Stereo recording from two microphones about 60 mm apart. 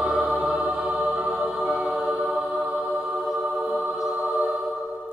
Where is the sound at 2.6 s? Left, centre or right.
Centre.